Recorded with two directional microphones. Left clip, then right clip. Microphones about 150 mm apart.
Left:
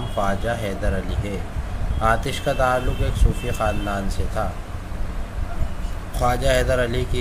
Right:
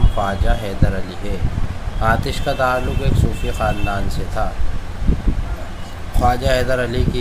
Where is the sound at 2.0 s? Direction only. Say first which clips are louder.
Right 2 dB; 15° left (ahead or behind).